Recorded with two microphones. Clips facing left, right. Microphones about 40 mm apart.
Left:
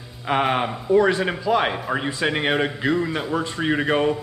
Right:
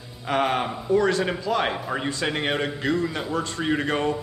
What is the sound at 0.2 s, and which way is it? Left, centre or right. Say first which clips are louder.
Speech: left 2 dB; centre.